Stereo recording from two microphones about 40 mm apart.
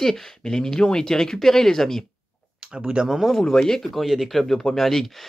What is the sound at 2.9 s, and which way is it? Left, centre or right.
Speech, centre.